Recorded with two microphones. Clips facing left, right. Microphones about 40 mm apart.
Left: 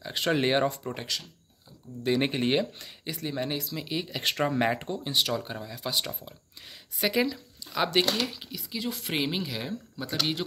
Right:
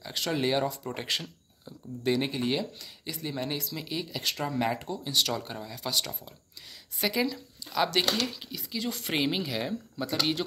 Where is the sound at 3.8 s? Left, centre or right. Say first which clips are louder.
Left 2 dB; centre.